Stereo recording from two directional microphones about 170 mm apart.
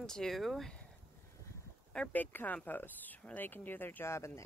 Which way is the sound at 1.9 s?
5° left (ahead or behind).